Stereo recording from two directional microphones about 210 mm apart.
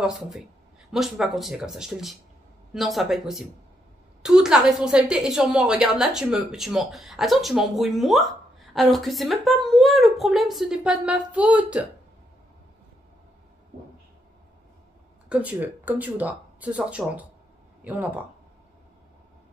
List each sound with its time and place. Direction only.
0.9 s a woman's voice: centre (ahead or behind)
15.2 s speech: 5° right (ahead or behind)